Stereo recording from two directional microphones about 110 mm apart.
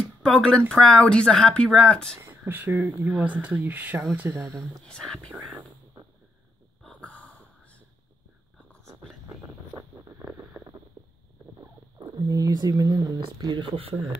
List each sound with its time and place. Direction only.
0.2 s speech: 10° left (ahead or behind)
2.1 s speech: 20° right (ahead or behind)
4.6 s speech: 5° left (ahead or behind)
6.8 s snort: 10° left (ahead or behind)
9.8 s boat: 30° right (ahead or behind)
11.0 s a sound: 30° right (ahead or behind)
12.2 s speech: 35° right (ahead or behind)
13.7 s speech: 55° right (ahead or behind)